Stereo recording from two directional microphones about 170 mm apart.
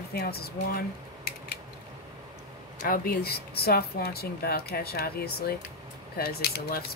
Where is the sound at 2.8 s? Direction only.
60° left (ahead or behind).